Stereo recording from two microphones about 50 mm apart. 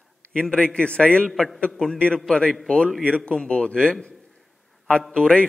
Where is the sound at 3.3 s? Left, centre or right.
Centre.